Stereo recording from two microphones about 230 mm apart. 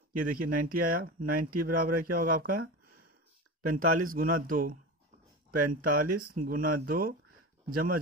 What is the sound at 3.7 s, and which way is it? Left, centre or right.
Speech, right.